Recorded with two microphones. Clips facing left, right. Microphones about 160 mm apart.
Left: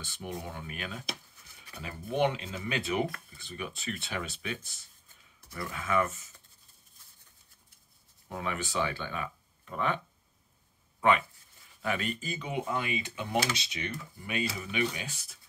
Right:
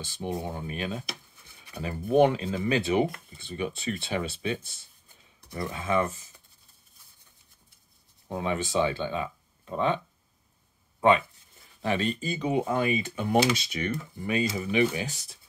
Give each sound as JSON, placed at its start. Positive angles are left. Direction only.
{"t": 0.2, "sound": "speech", "side_deg": -30}
{"t": 8.3, "sound": "speech", "side_deg": -25}
{"t": 11.0, "sound": "speech", "side_deg": -25}
{"t": 14.6, "sound": "speech", "side_deg": -35}